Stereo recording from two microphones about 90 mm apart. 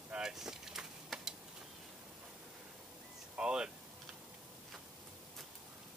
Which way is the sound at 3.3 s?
10° right (ahead or behind).